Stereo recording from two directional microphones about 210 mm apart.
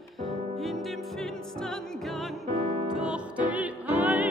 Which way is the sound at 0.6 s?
Centre (ahead or behind).